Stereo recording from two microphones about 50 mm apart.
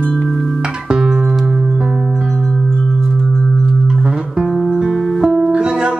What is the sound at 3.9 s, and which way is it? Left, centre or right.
Music, centre.